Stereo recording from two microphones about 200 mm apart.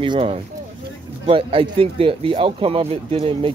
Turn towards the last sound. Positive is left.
turn(degrees=-30)  # may be behind; listen again after turning